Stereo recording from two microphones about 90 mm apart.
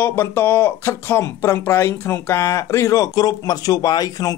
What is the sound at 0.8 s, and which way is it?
Speech, 30° left (ahead or behind).